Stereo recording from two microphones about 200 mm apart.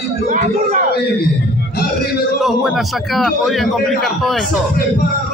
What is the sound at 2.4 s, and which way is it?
A man's voice, centre (ahead or behind).